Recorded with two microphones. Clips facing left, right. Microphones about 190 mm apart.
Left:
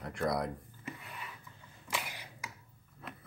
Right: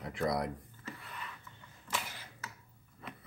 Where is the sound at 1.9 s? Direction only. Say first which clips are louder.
Left 1 dB; 15° left (ahead or behind).